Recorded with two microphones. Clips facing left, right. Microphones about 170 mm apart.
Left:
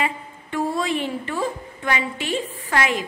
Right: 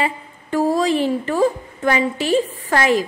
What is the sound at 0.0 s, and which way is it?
A woman's voice, 40° right (ahead or behind).